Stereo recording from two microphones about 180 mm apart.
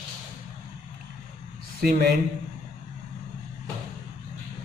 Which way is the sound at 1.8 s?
55° right (ahead or behind).